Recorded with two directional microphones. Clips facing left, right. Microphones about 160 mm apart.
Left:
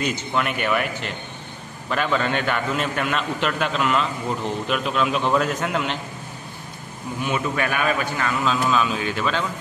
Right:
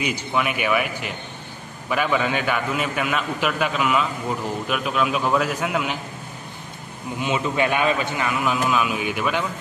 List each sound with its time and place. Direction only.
0.0 s a man's voice: 10° right (ahead or behind)
7.2 s a man's voice: 20° right (ahead or behind)